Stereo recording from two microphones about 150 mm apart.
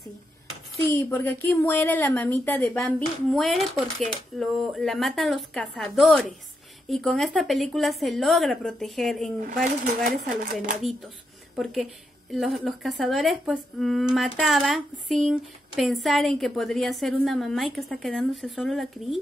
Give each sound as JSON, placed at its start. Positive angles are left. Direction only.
{"t": 0.8, "sound": "a woman's voice", "side_deg": 15}
{"t": 9.8, "sound": "speech", "side_deg": -65}
{"t": 11.5, "sound": "a woman's voice", "side_deg": 0}